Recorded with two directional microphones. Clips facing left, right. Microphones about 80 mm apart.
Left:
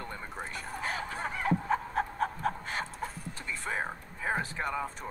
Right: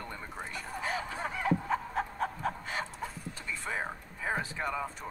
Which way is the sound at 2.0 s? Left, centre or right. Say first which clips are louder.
Left 2 dB; centre.